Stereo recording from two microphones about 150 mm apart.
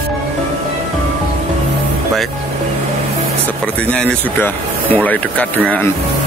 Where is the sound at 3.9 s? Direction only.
10° left (ahead or behind).